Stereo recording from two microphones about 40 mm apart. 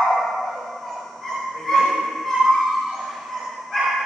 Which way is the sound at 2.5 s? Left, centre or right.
Centre.